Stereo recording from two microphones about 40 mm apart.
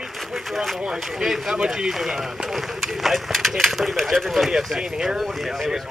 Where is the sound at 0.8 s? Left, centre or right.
Centre.